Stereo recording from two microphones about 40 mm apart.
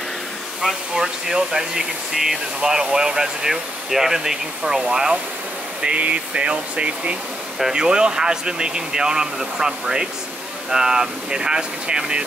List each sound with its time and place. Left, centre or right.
0.9 s speech: centre